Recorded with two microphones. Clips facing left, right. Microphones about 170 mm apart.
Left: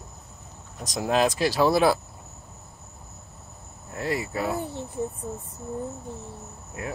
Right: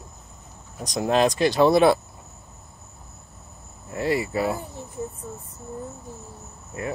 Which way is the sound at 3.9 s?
Centre (ahead or behind).